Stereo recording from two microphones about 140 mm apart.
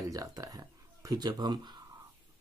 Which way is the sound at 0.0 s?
25° right (ahead or behind).